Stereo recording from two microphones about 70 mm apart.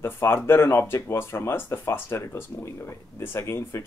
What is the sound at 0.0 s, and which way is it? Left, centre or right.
Speech, left.